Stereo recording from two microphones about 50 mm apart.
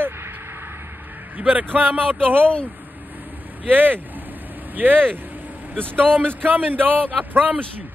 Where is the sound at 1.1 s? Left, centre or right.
Right.